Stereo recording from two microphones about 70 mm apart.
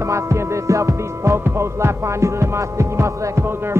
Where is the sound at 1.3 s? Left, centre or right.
Right.